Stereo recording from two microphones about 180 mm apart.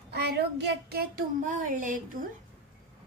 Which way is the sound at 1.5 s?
45° right (ahead or behind).